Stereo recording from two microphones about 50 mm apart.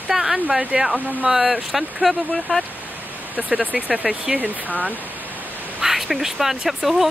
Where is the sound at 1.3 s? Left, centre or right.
Right.